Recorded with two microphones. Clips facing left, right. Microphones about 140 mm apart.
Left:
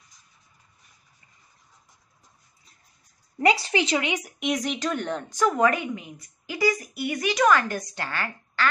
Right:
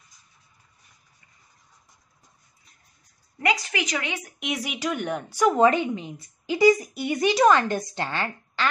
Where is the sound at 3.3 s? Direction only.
30° left (ahead or behind).